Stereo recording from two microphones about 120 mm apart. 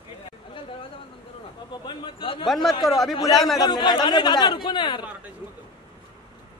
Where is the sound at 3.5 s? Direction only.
35° left (ahead or behind).